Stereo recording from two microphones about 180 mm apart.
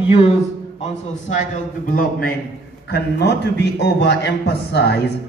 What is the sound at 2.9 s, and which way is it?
A man's voice, 65° left (ahead or behind).